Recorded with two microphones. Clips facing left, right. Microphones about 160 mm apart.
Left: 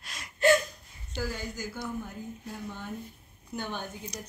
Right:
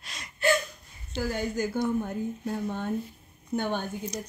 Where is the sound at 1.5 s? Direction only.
60° right (ahead or behind).